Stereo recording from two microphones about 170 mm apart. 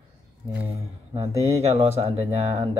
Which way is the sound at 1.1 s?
35° right (ahead or behind).